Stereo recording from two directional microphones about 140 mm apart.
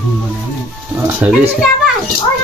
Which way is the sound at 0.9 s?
10° right (ahead or behind).